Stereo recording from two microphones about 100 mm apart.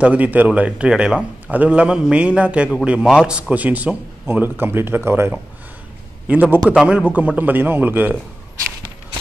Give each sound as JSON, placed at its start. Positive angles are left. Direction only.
{"t": 0.0, "sound": "a man's voice", "side_deg": -15}